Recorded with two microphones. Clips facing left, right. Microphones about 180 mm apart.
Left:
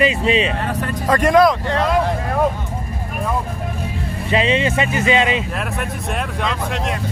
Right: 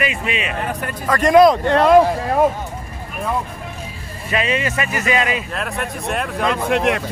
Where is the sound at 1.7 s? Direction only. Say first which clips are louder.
Right 6 dB; 60° right (ahead or behind).